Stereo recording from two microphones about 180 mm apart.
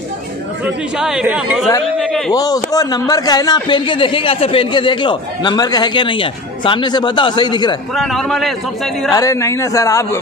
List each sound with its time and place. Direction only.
0.9 s a man's voice: 5° right (ahead or behind)
2.0 s a sound: centre (ahead or behind)
2.3 s a man's voice: 20° left (ahead or behind)
7.9 s a man's voice: centre (ahead or behind)
9.1 s a man's voice: 15° left (ahead or behind)